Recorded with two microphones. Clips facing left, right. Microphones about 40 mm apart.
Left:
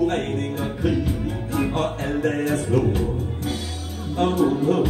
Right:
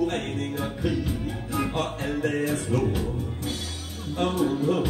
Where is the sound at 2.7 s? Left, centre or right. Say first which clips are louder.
Left 5 dB; centre.